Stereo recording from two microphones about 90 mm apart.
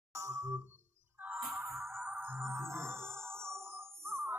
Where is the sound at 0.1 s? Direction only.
35° right (ahead or behind).